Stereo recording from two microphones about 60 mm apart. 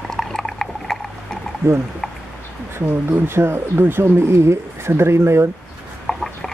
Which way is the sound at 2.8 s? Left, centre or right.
Right.